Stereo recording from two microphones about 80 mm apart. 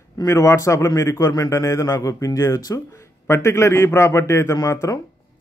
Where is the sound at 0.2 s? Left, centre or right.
Left.